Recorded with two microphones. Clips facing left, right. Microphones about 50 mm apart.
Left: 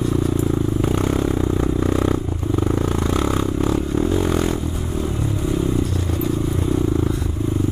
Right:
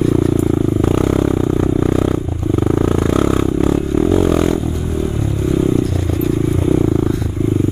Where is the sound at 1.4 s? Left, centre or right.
Right.